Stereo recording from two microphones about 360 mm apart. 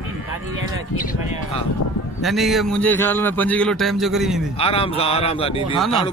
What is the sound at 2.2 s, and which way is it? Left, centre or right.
A man's voice, centre.